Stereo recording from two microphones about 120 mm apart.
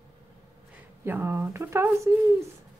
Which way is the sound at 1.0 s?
20° right (ahead or behind).